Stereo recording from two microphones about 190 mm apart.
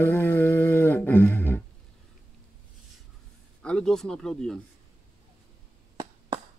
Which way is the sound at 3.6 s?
5° left (ahead or behind).